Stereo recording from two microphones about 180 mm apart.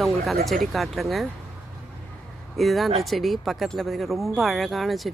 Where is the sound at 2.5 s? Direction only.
Centre (ahead or behind).